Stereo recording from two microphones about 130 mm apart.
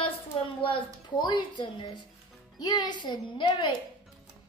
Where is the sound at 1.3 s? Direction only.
35° left (ahead or behind).